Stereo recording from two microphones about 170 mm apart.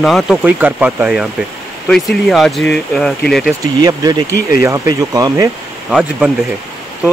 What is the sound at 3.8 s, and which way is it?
Speech, 25° right (ahead or behind).